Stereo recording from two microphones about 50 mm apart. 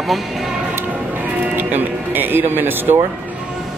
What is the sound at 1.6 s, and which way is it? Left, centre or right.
Speech, right.